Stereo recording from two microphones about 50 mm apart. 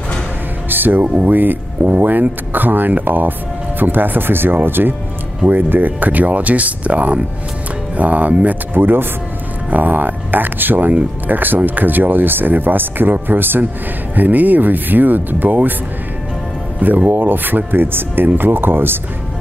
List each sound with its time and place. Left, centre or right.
0.7 s music: right
1.0 s speech: right
1.3 s speech: right
8.7 s speech: right
17.1 s speech: right